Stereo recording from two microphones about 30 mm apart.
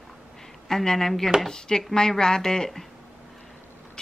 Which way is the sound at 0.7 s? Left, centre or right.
Centre.